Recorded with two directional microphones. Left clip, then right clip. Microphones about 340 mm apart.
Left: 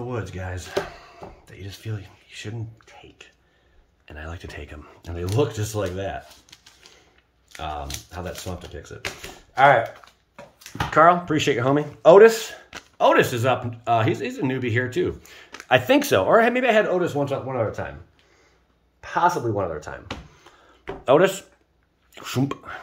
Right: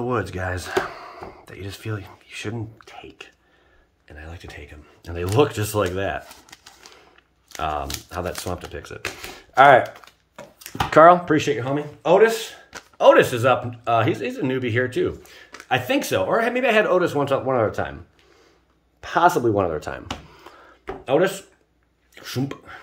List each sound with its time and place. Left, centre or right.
0.1 s speech: centre
4.1 s speech: centre
5.1 s speech: centre
9.5 s a sound: right
11.2 s speech: centre
18.9 s speech: right
21.0 s speech: centre